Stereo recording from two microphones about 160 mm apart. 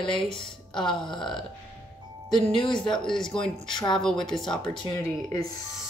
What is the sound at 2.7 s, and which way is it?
A woman's voice, 5° left (ahead or behind).